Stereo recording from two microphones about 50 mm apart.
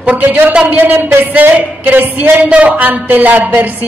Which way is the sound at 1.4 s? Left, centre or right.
Right.